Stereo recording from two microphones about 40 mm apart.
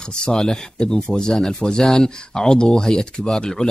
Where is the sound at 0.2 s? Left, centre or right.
Centre.